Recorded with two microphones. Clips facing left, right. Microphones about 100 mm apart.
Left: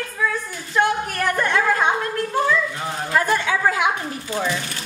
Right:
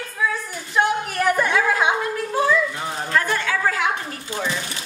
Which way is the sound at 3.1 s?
15° left (ahead or behind).